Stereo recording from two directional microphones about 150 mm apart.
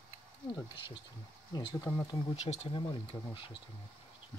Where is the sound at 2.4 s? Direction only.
50° left (ahead or behind).